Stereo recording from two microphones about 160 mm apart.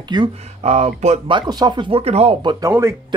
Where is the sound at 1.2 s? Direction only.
30° right (ahead or behind).